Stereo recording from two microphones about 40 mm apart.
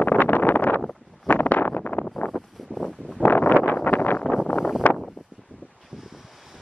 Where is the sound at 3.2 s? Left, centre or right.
Left.